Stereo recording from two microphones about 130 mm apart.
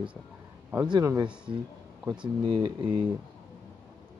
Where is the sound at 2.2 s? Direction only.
40° right (ahead or behind).